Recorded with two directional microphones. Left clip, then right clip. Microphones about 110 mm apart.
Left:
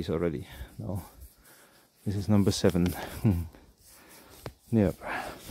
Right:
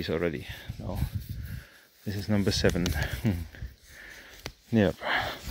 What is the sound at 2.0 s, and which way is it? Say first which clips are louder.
Speech: left 1 dB; 50° left (ahead or behind).